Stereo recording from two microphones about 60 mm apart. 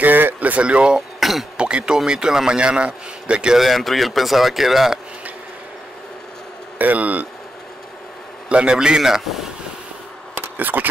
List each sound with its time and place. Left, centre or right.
0.0 s speech: right
0.9 s throat clearing: centre
1.6 s a man's voice: centre
3.5 s speech: centre
6.8 s speech: right
8.5 s a man's voice: centre
10.6 s speech: right